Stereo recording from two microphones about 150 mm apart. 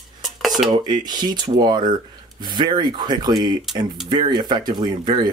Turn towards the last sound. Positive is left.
turn(degrees=-30)  # may be behind; listen again after turning